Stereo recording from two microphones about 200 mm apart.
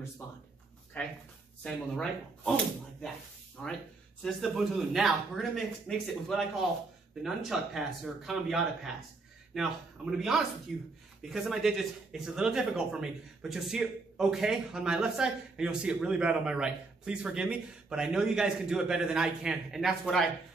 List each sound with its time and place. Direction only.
1.0 s speech: 10° left (ahead or behind)